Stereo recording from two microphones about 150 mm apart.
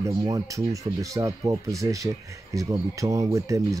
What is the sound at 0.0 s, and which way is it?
Speech, 25° right (ahead or behind).